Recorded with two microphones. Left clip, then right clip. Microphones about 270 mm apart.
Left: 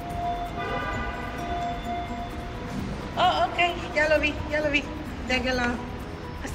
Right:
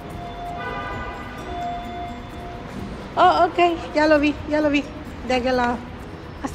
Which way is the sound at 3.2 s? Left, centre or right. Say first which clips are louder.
Right 7 dB; right.